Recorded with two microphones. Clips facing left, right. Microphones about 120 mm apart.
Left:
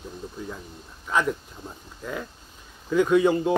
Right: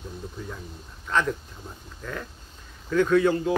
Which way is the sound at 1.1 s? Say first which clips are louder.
Left 1 dB; 10° left (ahead or behind).